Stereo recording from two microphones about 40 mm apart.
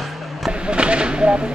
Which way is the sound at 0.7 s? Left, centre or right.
Right.